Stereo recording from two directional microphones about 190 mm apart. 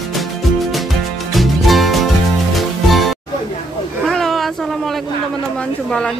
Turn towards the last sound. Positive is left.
turn(degrees=5)  # may be behind; listen again after turning